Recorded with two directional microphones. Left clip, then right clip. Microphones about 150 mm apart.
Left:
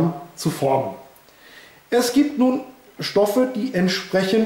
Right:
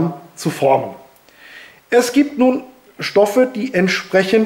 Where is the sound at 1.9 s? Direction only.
20° right (ahead or behind).